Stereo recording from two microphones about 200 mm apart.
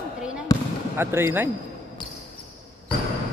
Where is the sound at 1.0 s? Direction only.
10° right (ahead or behind).